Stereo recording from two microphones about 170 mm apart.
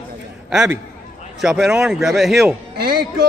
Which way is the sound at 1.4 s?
5° right (ahead or behind).